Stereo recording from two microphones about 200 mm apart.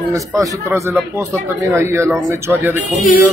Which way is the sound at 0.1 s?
15° right (ahead or behind).